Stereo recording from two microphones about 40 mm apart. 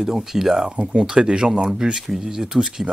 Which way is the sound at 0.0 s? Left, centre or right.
Centre.